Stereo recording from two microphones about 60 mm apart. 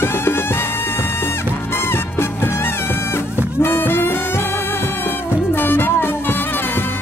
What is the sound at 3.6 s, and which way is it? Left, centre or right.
Music, left.